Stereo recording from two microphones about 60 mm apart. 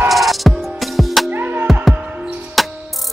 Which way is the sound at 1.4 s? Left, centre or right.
Right.